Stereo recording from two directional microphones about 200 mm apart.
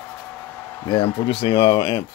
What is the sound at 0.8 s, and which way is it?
Speech, 25° left (ahead or behind).